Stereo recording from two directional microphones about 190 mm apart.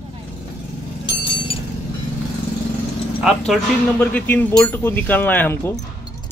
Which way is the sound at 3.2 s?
5° right (ahead or behind).